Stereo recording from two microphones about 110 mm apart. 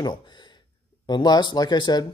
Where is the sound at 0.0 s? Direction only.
45° left (ahead or behind).